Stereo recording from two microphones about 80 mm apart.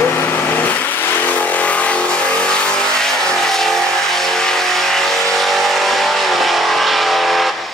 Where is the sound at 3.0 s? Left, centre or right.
Centre.